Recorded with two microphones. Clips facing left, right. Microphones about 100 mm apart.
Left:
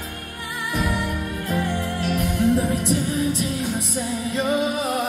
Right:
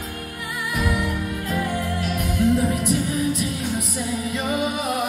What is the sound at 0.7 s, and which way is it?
Music, 30° left (ahead or behind).